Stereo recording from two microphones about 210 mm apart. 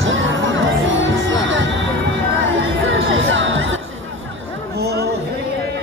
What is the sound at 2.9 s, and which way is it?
Music, 65° right (ahead or behind).